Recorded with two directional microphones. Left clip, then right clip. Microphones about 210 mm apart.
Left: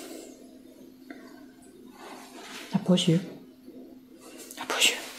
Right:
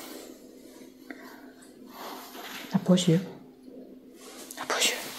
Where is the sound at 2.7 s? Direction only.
Centre (ahead or behind).